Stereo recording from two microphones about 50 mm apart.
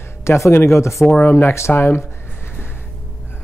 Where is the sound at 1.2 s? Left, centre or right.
Left.